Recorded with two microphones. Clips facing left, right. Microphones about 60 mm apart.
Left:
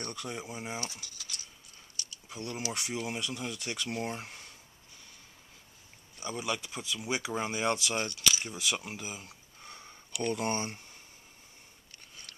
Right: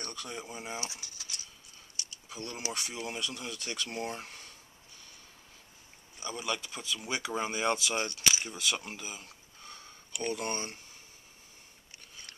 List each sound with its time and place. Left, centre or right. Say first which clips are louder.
0.0 s speech: left 2 dB; centre
0.7 s speech: left 1 dB; right
2.0 s a sound: even; right
2.7 s speech: left 2 dB; centre
6.2 s speech: left 1 dB; centre
7.3 s speech: right 1 dB; centre
8.1 s speech: even; right
8.5 s speech: even; centre
9.6 s a sound: left 1 dB; centre
10.1 s speech: left 2 dB; centre
10.4 s speech: left 3 dB; centre